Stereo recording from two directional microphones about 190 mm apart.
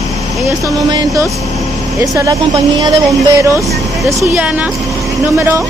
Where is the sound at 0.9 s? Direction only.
20° right (ahead or behind).